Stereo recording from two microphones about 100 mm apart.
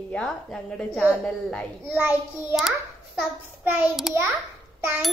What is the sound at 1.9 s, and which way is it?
Child singing, 20° right (ahead or behind).